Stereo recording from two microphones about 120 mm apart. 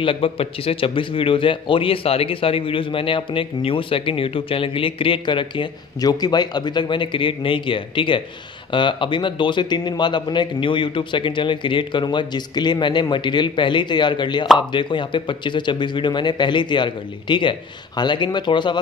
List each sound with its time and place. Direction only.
0.0 s a man's voice: 50° left (ahead or behind)